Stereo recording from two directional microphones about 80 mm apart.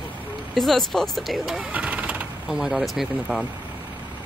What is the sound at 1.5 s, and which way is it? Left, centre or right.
Vehicle, centre.